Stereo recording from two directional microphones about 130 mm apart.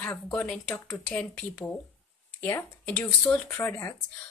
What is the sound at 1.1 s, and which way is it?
Speech, 15° left (ahead or behind).